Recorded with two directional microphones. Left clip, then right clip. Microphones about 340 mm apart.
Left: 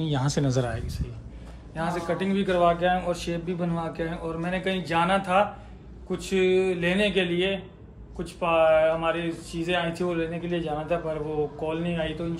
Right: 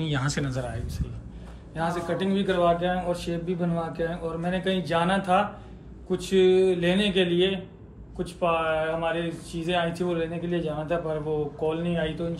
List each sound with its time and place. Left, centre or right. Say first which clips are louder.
0.0 s speech: left 2 dB; centre
1.8 s a man's voice: even; centre